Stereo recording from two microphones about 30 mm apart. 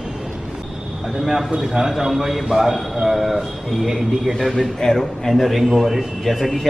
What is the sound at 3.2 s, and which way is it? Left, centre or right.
A man's voice, centre.